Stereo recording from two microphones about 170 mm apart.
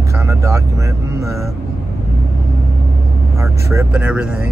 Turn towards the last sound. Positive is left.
turn(degrees=-5)  # may be behind; listen again after turning